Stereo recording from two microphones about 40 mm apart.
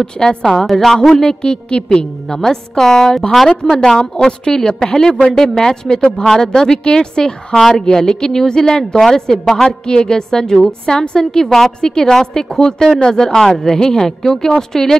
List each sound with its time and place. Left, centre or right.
0.0 s a woman's voice: centre
1.1 s a woman's voice: left